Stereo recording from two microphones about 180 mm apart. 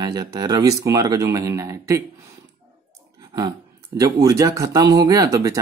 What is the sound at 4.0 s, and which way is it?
Speech, 20° right (ahead or behind).